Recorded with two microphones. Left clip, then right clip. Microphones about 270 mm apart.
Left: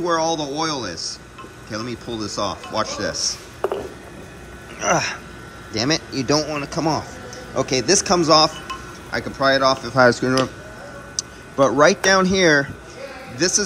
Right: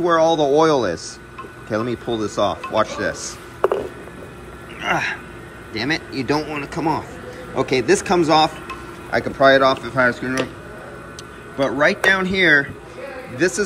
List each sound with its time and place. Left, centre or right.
0.0 s speech: centre
3.2 s a sound: centre
4.7 s a man's voice: centre
11.8 s a man's voice: centre